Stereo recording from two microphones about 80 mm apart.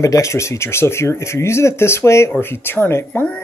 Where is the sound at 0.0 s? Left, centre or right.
Left.